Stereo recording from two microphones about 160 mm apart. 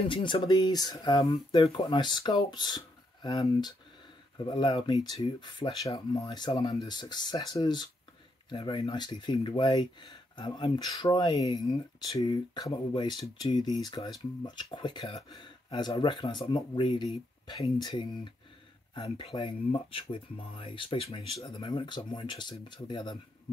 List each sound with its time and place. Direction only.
0.1 s speech: 30° left (ahead or behind)